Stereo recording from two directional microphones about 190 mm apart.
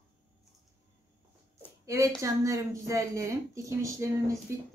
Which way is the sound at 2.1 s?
15° right (ahead or behind).